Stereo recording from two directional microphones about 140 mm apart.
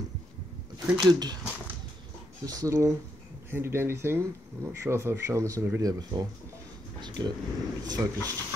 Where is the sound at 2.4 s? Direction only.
25° right (ahead or behind).